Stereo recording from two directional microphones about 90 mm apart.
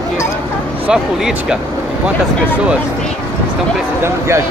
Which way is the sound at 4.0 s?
30° right (ahead or behind).